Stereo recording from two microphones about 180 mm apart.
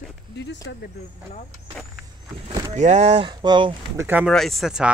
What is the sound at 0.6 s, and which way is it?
Speech, 90° left.